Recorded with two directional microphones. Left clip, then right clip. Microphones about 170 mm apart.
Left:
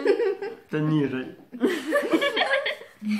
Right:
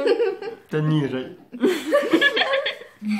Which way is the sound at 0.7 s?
45° right (ahead or behind).